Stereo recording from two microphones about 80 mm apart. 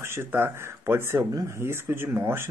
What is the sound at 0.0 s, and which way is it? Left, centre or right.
Speech, right.